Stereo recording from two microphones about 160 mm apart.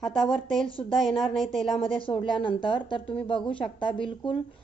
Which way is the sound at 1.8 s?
35° left (ahead or behind).